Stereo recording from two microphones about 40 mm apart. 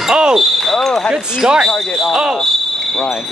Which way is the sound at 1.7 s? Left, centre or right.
Centre.